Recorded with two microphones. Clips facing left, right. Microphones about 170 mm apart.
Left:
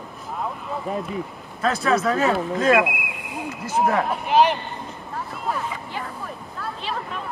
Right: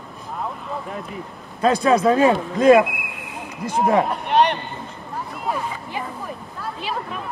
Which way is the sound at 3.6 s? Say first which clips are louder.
Right 3 dB; 5° left (ahead or behind).